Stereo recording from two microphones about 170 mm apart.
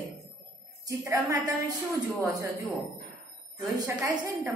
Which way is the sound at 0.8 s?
20° right (ahead or behind).